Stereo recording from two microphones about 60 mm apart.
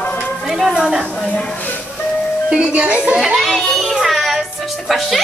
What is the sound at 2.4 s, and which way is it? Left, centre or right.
Speech, centre.